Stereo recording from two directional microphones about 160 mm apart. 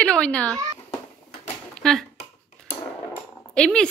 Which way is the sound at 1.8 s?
5° left (ahead or behind).